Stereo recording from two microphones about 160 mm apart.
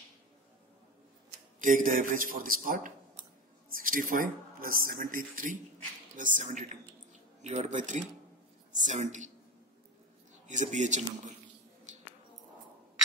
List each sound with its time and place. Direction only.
1.6 s a man's voice: 55° right (ahead or behind)
10.5 s speech: 50° right (ahead or behind)
11.9 s a sound: 50° right (ahead or behind)